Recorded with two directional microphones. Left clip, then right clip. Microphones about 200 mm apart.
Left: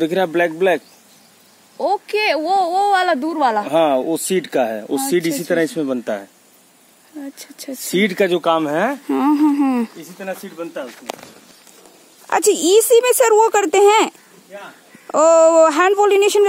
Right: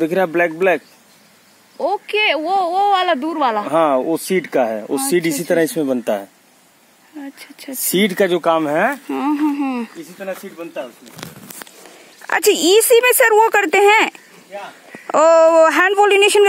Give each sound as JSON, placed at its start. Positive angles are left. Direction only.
{"t": 0.1, "sound": "speech", "side_deg": 5}
{"t": 1.8, "sound": "speech", "side_deg": 20}
{"t": 3.6, "sound": "speech", "side_deg": 0}
{"t": 4.6, "sound": "speech", "side_deg": -15}
{"t": 7.7, "sound": "speech", "side_deg": -35}
{"t": 8.5, "sound": "speech", "side_deg": 0}
{"t": 9.0, "sound": "speech", "side_deg": 30}
{"t": 10.2, "sound": "speech", "side_deg": 55}
{"t": 12.6, "sound": "speech", "side_deg": 5}